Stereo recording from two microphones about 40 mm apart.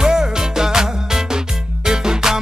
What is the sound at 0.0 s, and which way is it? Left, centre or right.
Music, centre.